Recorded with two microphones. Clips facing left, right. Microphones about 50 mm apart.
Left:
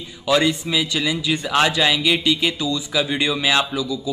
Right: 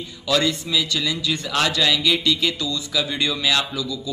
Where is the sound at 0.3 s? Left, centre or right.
Centre.